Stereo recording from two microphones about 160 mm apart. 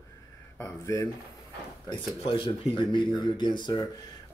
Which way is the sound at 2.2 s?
35° left (ahead or behind).